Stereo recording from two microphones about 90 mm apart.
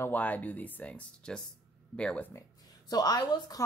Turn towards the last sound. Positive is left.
turn(degrees=45)  # may be behind; listen again after turning